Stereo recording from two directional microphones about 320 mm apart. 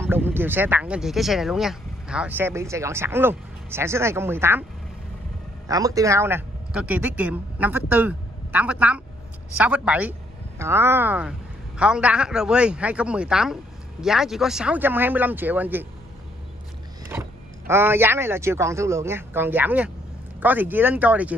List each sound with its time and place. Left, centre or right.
0.0 s speech: centre
5.7 s a man's voice: centre
17.1 s a man's voice: centre